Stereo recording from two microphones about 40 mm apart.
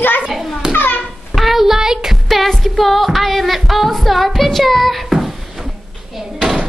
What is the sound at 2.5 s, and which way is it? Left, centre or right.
Music, centre.